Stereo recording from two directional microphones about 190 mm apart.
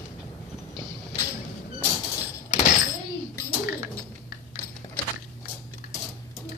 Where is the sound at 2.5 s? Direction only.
40° left (ahead or behind).